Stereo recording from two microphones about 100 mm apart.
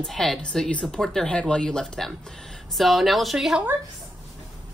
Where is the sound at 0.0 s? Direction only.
Centre (ahead or behind).